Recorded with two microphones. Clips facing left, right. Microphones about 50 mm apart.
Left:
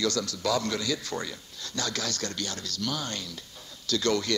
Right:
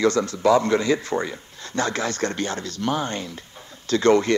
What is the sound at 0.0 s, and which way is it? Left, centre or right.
A man's voice, right.